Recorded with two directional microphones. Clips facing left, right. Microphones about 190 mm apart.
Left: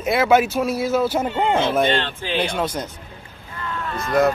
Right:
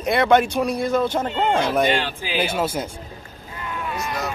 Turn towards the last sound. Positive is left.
turn(degrees=55)  # may be behind; listen again after turning